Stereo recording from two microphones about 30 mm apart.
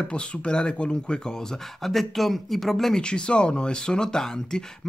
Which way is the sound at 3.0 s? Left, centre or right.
Left.